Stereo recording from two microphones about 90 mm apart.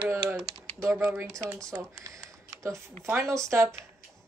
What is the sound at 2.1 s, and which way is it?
Speech, 35° right (ahead or behind).